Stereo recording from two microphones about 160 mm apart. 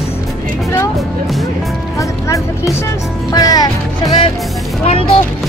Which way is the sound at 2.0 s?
20° left (ahead or behind).